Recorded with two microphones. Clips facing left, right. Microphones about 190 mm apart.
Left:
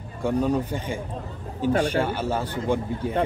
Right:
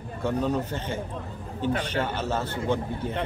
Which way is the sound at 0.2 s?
10° left (ahead or behind).